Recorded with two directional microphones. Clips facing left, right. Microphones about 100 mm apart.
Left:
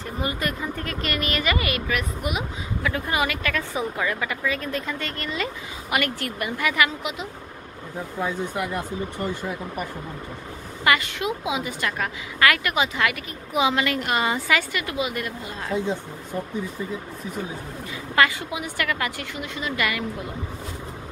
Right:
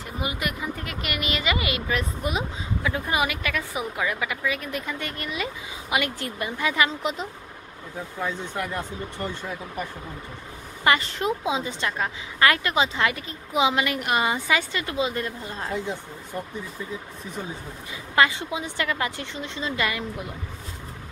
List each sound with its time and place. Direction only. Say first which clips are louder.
0.2 s speech: left 2 dB; 15° right (ahead or behind)
2.0 s a woman's voice: even; 30° right (ahead or behind)
2.8 s speech: left 1 dB; 20° right (ahead or behind)
7.0 s speech: right 2 dB; 35° right (ahead or behind)
8.2 s speech: left 3 dB; 10° left (ahead or behind)
10.8 s a woman's voice: even; 30° right (ahead or behind)
15.7 s speech: left 5 dB; 15° left (ahead or behind)
18.1 s a woman's voice: even; 25° right (ahead or behind)